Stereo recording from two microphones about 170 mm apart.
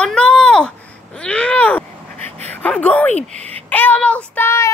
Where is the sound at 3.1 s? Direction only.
40° right (ahead or behind).